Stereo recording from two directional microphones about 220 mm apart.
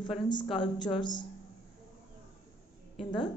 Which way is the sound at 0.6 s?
20° left (ahead or behind).